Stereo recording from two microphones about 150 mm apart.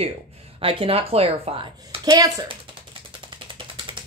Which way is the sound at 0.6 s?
35° right (ahead or behind).